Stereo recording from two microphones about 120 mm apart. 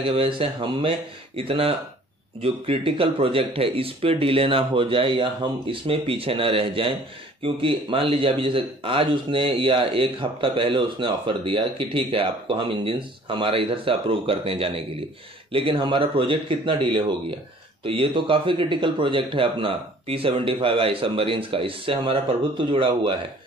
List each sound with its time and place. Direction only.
0.1 s a man's voice: 45° right (ahead or behind)